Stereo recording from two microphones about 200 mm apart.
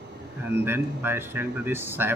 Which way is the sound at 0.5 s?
10° right (ahead or behind).